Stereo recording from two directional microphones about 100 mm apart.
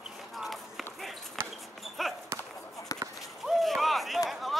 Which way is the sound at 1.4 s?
25° right (ahead or behind).